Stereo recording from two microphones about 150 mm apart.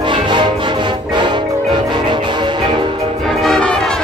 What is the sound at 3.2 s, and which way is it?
Music, centre (ahead or behind).